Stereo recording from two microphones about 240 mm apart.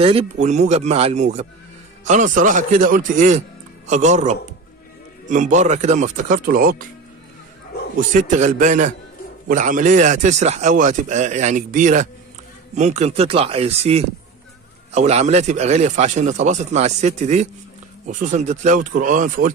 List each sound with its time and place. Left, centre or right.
0.0 s a man's voice: right
8.1 s a man's voice: right